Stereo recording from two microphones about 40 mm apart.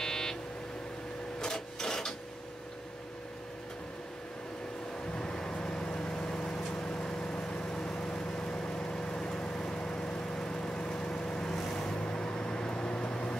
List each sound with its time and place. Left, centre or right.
0.0 s beep: centre
1.4 s printer: centre
5.1 s vehicle: centre
12.0 s vehicle: left